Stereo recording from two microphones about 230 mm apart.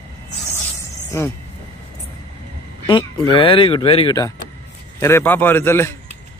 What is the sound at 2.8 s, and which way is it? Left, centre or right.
A man's voice, left.